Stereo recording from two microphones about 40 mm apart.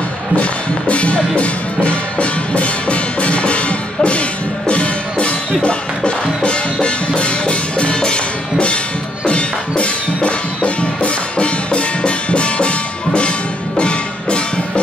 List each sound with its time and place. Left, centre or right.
0.4 s music: left